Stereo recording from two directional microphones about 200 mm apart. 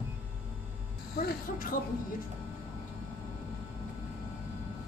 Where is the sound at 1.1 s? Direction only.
45° left (ahead or behind).